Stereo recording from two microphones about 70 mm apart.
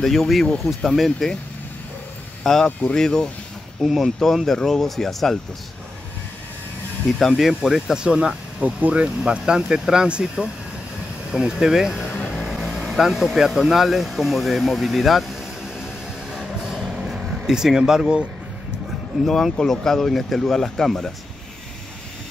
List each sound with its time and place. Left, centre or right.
0.0 s speech: centre
2.4 s speech: centre
3.8 s speech: centre
7.2 s speech: centre
7.4 s speech: centre
16.3 s vehicle: centre
19.2 s speech: centre